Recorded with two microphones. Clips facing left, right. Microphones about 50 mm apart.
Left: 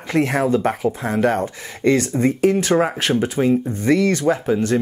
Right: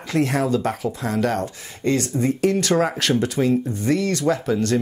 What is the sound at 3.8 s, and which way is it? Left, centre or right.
Speech, left.